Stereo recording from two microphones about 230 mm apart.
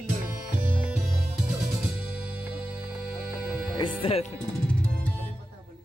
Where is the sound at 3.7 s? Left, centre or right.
Left.